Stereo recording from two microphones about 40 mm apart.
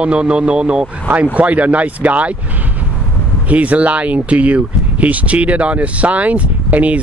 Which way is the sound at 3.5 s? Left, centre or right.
Right.